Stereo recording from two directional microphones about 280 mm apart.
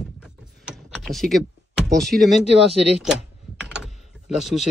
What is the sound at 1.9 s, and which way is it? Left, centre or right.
Speech, centre.